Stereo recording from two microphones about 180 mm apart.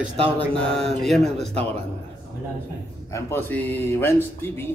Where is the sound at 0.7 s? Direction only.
Centre (ahead or behind).